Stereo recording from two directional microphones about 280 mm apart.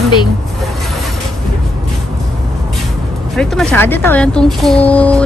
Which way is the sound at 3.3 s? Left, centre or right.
Centre.